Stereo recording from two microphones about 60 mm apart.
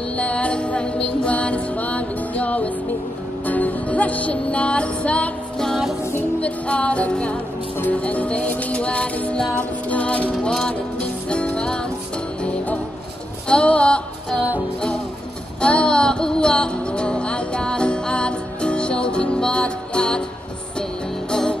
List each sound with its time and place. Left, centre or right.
0.2 s music: left
6.4 s music: left
13.5 s music: centre
15.6 s music: centre
21.3 s music: centre